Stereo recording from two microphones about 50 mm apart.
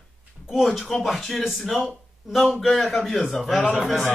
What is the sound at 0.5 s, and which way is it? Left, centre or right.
Speech, centre.